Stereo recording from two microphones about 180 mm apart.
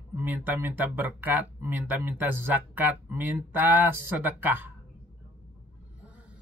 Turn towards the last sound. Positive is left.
turn(degrees=-10)  # may be behind; listen again after turning